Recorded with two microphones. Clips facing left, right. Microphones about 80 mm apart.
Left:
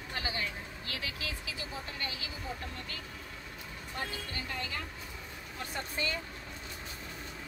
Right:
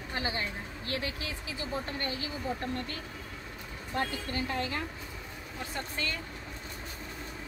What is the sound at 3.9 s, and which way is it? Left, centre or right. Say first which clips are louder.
Speech: right 7 dB; right.